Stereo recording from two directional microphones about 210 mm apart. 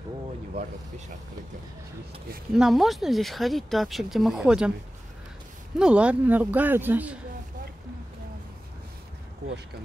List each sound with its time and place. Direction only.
0.6 s speech: 35° right (ahead or behind)
2.5 s speech: centre (ahead or behind)
5.8 s speech: 5° right (ahead or behind)